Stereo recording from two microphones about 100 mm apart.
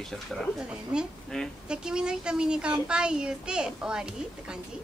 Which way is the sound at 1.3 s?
5° left (ahead or behind).